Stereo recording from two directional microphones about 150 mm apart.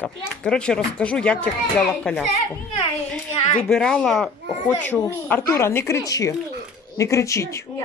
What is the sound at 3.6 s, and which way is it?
A woman's voice, 5° left (ahead or behind).